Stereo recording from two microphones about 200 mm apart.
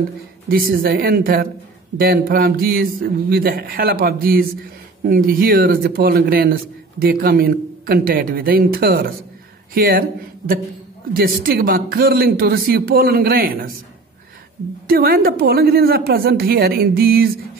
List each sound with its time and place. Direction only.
0.5 s speech: 50° right (ahead or behind)
14.9 s speech: 50° right (ahead or behind)